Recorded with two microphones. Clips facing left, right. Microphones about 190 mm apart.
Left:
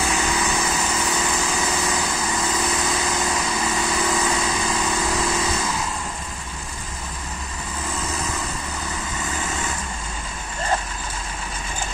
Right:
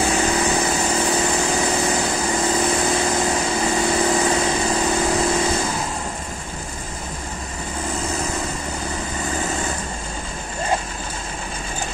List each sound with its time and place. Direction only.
0.0 s light engine: 30° right (ahead or behind)
9.2 s vehicle: 35° right (ahead or behind)